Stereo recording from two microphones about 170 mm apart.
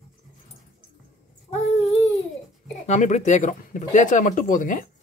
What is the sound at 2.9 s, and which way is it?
Speech, 45° left (ahead or behind).